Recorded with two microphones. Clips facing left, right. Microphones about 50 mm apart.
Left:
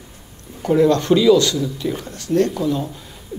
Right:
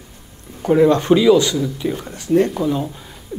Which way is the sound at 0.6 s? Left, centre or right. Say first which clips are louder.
Right 2 dB; centre.